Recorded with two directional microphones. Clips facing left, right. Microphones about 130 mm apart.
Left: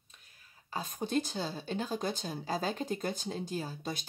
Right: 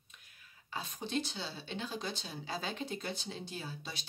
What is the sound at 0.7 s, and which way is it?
Speech, 45° left (ahead or behind).